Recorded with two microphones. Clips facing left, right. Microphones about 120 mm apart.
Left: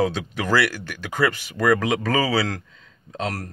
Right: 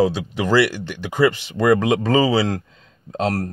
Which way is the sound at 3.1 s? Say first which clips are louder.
Right 7 dB; 35° right (ahead or behind).